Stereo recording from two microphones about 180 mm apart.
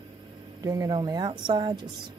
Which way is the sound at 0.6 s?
20° right (ahead or behind).